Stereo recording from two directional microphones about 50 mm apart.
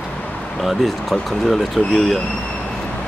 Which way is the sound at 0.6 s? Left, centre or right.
Centre.